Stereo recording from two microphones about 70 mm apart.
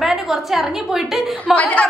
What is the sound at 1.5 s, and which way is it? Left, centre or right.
Speech, centre.